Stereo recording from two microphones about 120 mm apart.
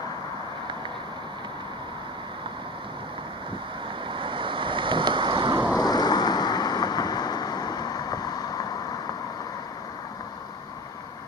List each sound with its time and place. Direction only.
4.1 s boat: 45° right (ahead or behind)
5.8 s vehicle: 35° left (ahead or behind)